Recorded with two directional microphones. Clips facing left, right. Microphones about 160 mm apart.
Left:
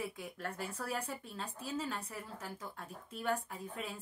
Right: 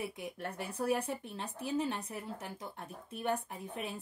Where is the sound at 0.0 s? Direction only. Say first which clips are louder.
Right 2 dB; 20° right (ahead or behind).